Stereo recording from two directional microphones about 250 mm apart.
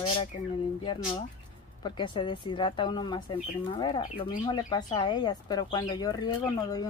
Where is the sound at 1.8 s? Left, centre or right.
Centre.